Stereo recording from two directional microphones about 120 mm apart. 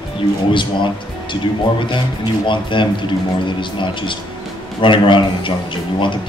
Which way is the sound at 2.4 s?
40° left (ahead or behind).